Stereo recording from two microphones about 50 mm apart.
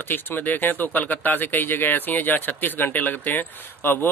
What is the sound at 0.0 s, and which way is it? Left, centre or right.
Speech, left.